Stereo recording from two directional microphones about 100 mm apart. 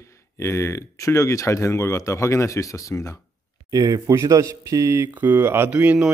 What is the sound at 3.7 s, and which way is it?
A man's voice, 40° right (ahead or behind).